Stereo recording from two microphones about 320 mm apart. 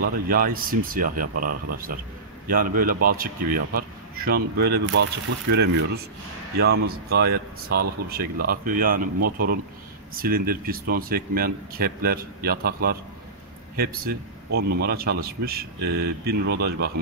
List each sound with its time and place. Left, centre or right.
0.0 s speech: right
10.1 s speech: right